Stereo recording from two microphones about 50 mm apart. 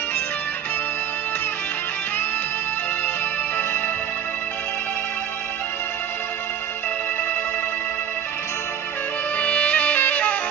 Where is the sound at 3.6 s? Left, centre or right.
Left.